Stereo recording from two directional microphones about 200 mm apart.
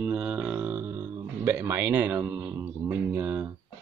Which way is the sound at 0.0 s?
5° right (ahead or behind).